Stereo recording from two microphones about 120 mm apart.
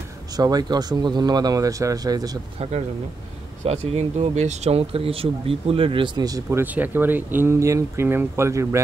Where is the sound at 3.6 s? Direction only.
55° right (ahead or behind); by 6.6 s 30° right (ahead or behind).